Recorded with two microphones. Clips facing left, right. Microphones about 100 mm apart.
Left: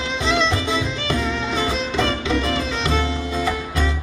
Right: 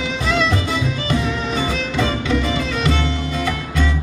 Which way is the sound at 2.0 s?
5° right (ahead or behind).